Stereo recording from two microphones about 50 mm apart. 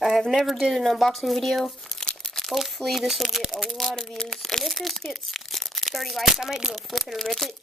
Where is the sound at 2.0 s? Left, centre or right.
Left.